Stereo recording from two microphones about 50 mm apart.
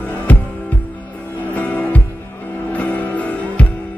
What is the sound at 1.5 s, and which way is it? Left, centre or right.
Music, left.